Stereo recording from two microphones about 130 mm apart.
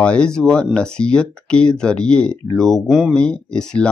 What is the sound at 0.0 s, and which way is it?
Speech, 5° left (ahead or behind).